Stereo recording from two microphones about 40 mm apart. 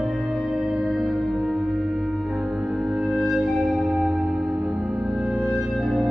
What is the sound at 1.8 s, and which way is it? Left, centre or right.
Music, centre.